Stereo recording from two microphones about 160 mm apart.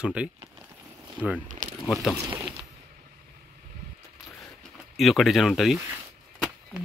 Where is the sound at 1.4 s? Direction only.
55° right (ahead or behind).